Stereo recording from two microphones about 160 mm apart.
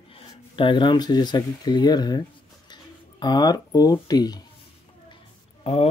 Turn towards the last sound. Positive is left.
turn(degrees=40)  # may be behind; listen again after turning